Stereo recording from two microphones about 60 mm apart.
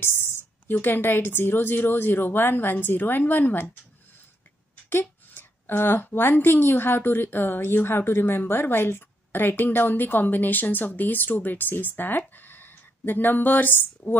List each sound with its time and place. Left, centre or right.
0.0 s a sound: left
0.7 s a woman's voice: left
5.3 s a woman's voice: left